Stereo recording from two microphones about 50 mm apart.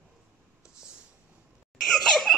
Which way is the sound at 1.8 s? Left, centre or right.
Centre.